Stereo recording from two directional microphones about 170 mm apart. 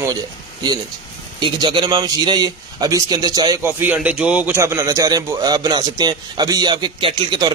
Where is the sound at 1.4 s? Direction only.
25° right (ahead or behind).